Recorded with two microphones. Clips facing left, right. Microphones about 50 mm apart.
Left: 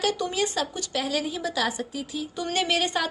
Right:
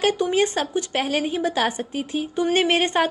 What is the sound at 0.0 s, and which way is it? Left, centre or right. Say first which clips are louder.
A woman's voice: right 6 dB; right.